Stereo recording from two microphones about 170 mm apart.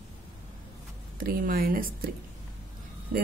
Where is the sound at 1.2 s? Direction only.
55° right (ahead or behind).